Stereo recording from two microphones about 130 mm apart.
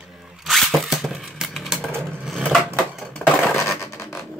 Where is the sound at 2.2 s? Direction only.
Centre (ahead or behind).